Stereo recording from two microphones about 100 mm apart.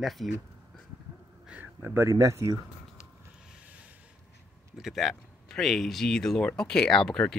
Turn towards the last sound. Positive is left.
turn(degrees=5)  # may be behind; listen again after turning